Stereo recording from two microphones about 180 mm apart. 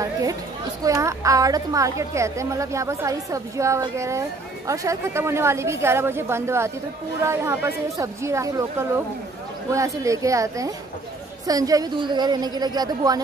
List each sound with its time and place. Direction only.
0.0 s chatter: 20° right (ahead or behind)
0.8 s a woman's voice: 20° right (ahead or behind)